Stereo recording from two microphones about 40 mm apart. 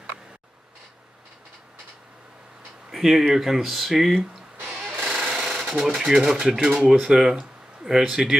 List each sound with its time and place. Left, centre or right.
2.9 s speech: centre
5.1 s sewing machine: centre
5.4 s sewing machine: centre
5.9 s speech: centre